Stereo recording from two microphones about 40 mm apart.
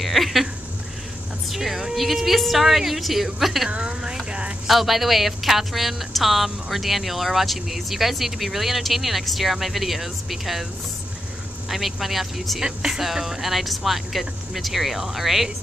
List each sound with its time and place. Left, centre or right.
0.0 s a woman's voice: centre
1.5 s a woman's voice: centre
3.7 s speech: right
4.6 s a woman's voice: centre
11.7 s a woman's voice: centre
12.6 s a woman's voice: centre